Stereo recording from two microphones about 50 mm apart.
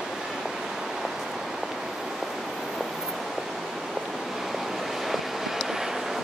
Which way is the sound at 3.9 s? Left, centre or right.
Centre.